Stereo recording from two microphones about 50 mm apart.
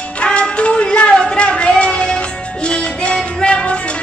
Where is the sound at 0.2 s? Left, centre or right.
Left.